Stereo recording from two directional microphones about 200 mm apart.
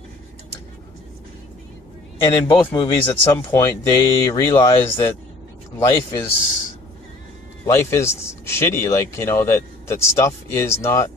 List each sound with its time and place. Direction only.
2.2 s speech: 25° left (ahead or behind)
3.5 s speech: 15° left (ahead or behind)
7.6 s speech: 15° left (ahead or behind)